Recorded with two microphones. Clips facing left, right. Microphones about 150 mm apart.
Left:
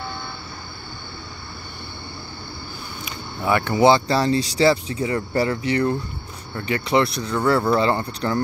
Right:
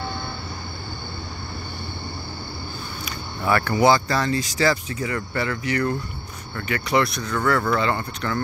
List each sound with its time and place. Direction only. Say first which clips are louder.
3.1 s speech: left 1 dB; 20° left (ahead or behind)